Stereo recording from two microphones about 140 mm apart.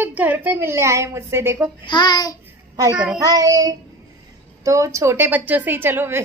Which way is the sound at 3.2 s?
25° right (ahead or behind).